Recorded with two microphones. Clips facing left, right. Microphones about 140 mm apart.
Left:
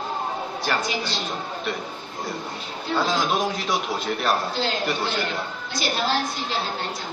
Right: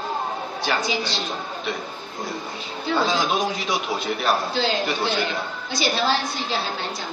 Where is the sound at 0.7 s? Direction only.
Centre (ahead or behind).